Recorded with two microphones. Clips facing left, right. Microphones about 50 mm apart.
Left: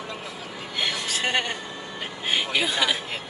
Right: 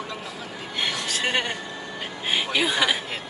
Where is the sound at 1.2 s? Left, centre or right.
Centre.